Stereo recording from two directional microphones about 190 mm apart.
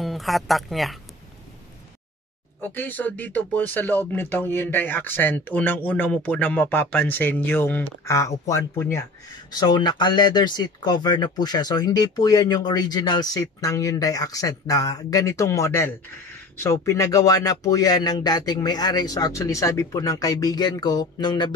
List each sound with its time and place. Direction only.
0.0 s speech: centre (ahead or behind)
2.6 s speech: 10° left (ahead or behind)